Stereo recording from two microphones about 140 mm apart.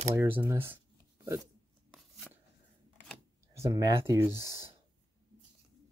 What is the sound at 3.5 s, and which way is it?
Speech, 25° right (ahead or behind).